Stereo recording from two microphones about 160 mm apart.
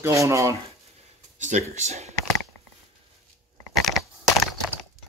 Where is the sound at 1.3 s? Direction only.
50° right (ahead or behind).